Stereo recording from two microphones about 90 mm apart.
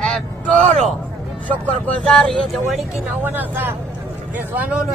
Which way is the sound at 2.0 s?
10° left (ahead or behind).